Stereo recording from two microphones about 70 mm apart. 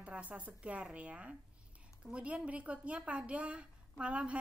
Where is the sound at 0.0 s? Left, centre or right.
Centre.